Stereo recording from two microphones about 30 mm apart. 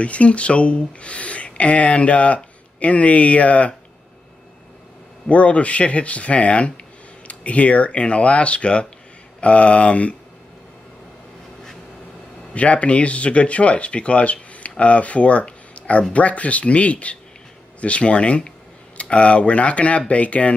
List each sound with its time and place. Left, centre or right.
0.0 s speech: left
5.3 s speech: left
12.5 s speech: left